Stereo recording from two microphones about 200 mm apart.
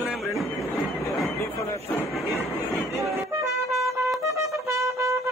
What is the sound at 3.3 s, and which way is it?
Trumpet, 15° right (ahead or behind).